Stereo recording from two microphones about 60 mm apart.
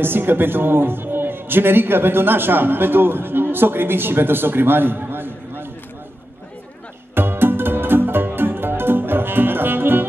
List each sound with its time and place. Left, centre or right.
0.0 s a man's voice: right
7.2 s music: right